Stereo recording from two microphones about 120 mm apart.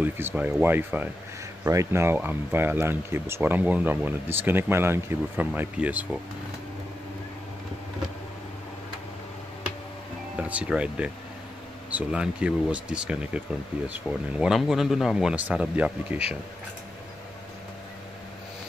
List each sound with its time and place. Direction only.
0.0 s speech: 15° right (ahead or behind)
10.3 s speech: 10° right (ahead or behind)